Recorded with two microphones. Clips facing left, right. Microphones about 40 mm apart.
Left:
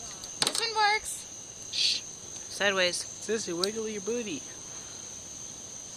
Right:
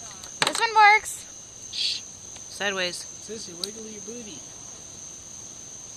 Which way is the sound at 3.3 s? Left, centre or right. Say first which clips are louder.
Left 8 dB; left.